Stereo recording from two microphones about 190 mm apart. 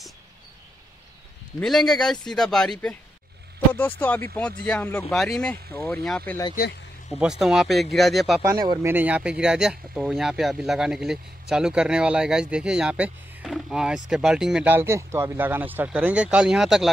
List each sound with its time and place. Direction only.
1.6 s speech: 5° left (ahead or behind)
4.0 s speech: 10° left (ahead or behind)
8.4 s speech: 20° right (ahead or behind)
8.9 s speech: 5° right (ahead or behind)